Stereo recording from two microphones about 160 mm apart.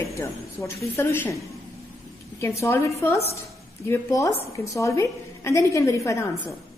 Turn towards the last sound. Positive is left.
turn(degrees=20)  # may be behind; listen again after turning